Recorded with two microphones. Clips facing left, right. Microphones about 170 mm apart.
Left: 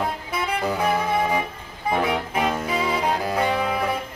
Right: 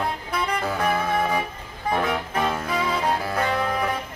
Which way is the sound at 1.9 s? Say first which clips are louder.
Left 1 dB; 10° left (ahead or behind).